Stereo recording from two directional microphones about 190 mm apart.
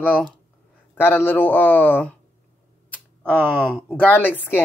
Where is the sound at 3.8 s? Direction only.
10° left (ahead or behind).